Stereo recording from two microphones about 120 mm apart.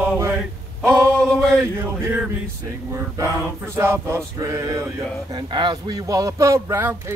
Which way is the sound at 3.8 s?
20° right (ahead or behind).